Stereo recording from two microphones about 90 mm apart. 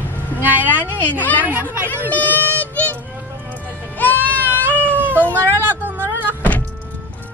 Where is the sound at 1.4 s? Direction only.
20° right (ahead or behind).